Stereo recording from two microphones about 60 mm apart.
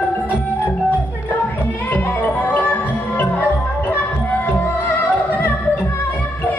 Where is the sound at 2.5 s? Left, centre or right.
Left.